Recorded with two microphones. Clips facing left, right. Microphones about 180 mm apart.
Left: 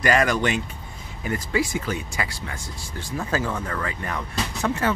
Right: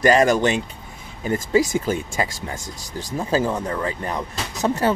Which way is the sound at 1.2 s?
35° right (ahead or behind).